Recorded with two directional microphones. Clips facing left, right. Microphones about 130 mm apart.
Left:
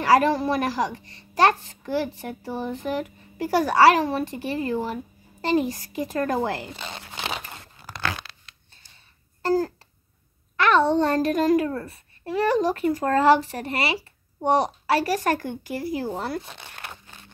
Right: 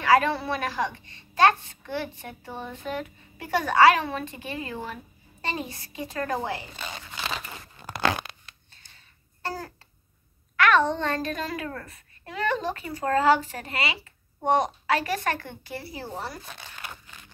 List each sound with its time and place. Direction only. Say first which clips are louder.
0.0 s a woman's voice: left 3 dB; 40° left (ahead or behind)
7.0 s crumpling: left 2 dB; 20° left (ahead or behind)
7.8 s a sound: right 4 dB; 15° right (ahead or behind)
10.5 s a sound: left 2 dB; 25° left (ahead or behind)
11.1 s a woman's voice: left 11 dB; 45° left (ahead or behind)
11.7 s a child's voice: left 7 dB; 30° left (ahead or behind)
12.6 s speech: left 6 dB; 45° left (ahead or behind)
16.4 s speech: left 1 dB; 20° left (ahead or behind)